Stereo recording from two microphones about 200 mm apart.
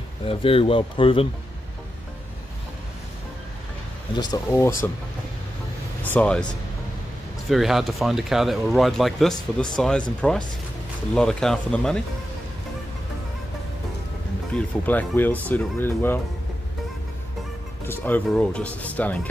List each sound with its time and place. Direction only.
0.2 s speech: 25° left (ahead or behind)
4.1 s speech: 20° left (ahead or behind)
6.0 s speech: 5° left (ahead or behind)
7.4 s speech: centre (ahead or behind)
11.1 s speech: 5° left (ahead or behind)
14.5 s speech: 10° left (ahead or behind)
17.8 s speech: 10° left (ahead or behind)